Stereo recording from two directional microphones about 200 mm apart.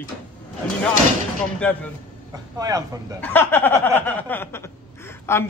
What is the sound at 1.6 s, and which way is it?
Speech, 5° left (ahead or behind).